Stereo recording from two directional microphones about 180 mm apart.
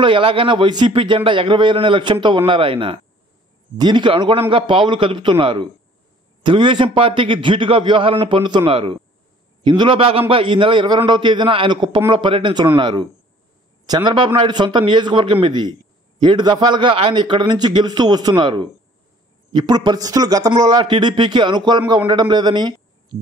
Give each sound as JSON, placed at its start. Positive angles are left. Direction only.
{"t": 0.0, "sound": "a man's voice", "side_deg": -30}